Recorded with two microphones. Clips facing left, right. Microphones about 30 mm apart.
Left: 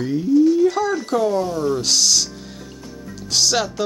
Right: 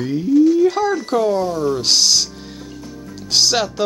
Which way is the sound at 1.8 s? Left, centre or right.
Right.